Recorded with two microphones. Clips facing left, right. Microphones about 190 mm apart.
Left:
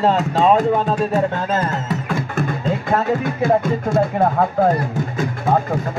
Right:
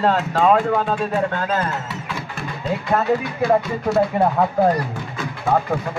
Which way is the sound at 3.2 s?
50° left (ahead or behind).